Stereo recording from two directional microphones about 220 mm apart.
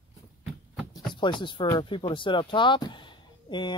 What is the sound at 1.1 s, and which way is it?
Speech, 20° left (ahead or behind).